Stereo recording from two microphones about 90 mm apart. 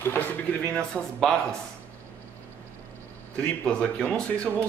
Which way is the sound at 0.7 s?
5° left (ahead or behind).